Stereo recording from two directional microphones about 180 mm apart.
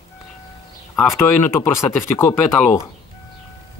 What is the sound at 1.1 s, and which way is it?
Speech, 15° left (ahead or behind).